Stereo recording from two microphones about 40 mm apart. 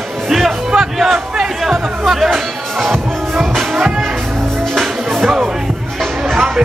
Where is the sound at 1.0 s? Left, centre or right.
Centre.